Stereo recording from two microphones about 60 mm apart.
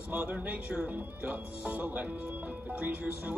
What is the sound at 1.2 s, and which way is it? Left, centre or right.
Speech, right.